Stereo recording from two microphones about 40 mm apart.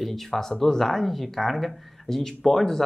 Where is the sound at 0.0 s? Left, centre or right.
Centre.